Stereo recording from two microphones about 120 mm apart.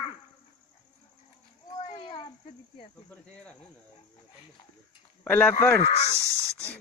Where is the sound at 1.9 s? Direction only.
45° left (ahead or behind).